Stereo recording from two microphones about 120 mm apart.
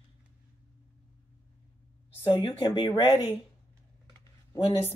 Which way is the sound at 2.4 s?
45° left (ahead or behind).